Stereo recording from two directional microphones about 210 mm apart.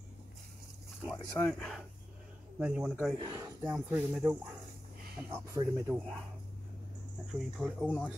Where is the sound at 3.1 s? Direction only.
20° right (ahead or behind).